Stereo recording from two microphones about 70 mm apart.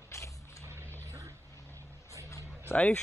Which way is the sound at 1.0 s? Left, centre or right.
Right.